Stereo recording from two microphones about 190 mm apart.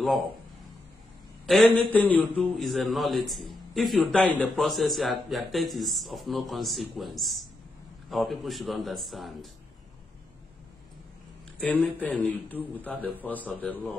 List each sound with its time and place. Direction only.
1.4 s a man's voice: centre (ahead or behind)
11.6 s a man's voice: 5° left (ahead or behind)